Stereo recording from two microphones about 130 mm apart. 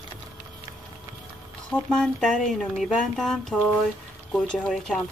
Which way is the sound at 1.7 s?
5° left (ahead or behind).